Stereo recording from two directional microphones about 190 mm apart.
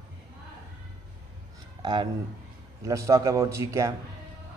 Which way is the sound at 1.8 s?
25° right (ahead or behind).